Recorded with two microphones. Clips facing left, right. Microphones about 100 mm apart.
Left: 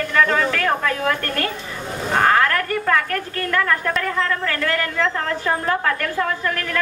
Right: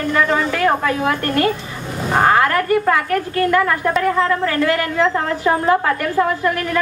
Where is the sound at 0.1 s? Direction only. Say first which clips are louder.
Right 1 dB; 15° right (ahead or behind).